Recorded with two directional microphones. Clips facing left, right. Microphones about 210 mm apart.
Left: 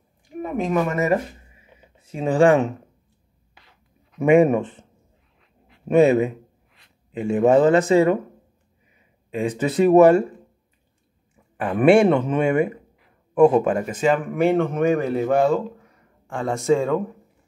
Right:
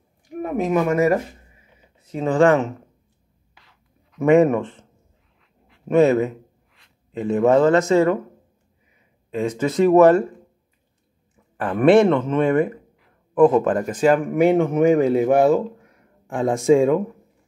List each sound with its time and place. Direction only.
0.4 s speech: 5° right (ahead or behind)
2.0 s speech: 15° left (ahead or behind)
4.2 s speech: 15° left (ahead or behind)
9.3 s speech: 15° left (ahead or behind)
11.5 s speech: 10° left (ahead or behind)
14.1 s speech: 10° right (ahead or behind)